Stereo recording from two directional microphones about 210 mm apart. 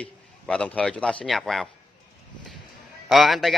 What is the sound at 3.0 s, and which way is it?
Speech, centre (ahead or behind).